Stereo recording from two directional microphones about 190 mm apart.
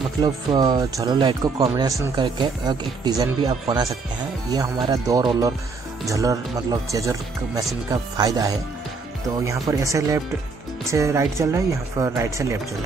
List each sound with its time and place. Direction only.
0.2 s speech: 20° right (ahead or behind)